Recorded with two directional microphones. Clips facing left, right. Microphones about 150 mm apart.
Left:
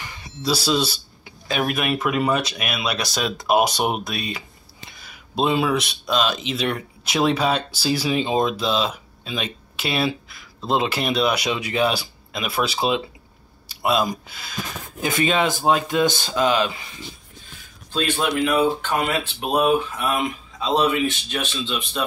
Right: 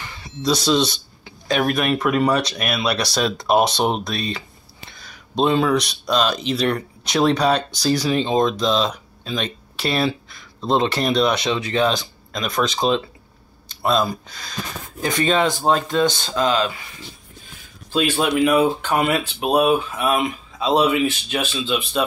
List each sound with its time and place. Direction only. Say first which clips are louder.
0.4 s speech: right 3 dB; 5° left (ahead or behind)
17.9 s speech: right 3 dB; 10° right (ahead or behind)